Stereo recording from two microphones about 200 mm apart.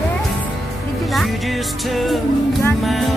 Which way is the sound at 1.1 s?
Centre (ahead or behind).